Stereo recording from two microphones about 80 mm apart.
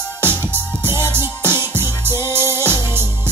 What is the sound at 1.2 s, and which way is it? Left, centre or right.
Music, right.